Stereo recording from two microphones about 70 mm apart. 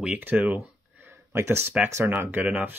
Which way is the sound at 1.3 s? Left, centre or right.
Right.